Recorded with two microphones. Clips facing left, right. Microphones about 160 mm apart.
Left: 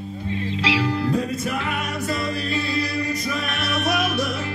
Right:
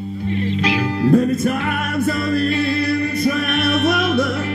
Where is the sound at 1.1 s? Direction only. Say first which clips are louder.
Right 8 dB; 50° right (ahead or behind).